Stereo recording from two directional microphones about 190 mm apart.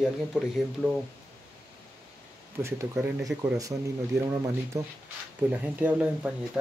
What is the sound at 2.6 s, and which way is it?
Speech, 15° right (ahead or behind).